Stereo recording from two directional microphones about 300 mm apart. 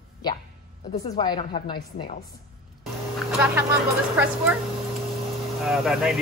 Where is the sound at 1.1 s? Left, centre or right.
Centre.